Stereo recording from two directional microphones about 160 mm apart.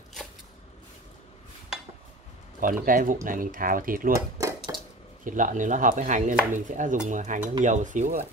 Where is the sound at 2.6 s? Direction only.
60° right (ahead or behind).